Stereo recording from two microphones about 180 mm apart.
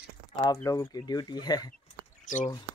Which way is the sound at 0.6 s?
15° left (ahead or behind).